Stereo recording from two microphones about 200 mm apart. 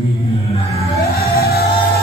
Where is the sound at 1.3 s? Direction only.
50° left (ahead or behind).